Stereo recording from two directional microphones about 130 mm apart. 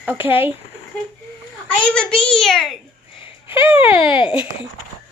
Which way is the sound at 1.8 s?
5° left (ahead or behind).